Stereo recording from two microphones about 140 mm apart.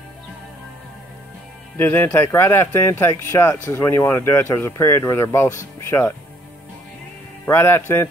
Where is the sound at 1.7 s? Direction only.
15° left (ahead or behind).